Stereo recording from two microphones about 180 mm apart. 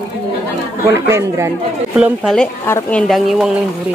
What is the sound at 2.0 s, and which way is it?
A woman's voice, 5° right (ahead or behind).